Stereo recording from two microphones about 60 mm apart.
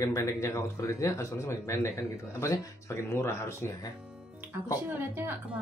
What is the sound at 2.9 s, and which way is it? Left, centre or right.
Speech, left.